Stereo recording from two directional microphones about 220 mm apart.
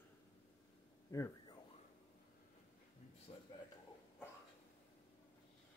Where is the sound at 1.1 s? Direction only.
15° left (ahead or behind).